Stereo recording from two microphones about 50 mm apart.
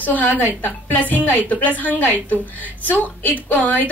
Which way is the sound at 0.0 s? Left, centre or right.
Left.